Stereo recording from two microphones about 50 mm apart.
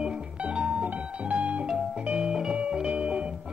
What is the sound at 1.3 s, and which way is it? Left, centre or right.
Music, right.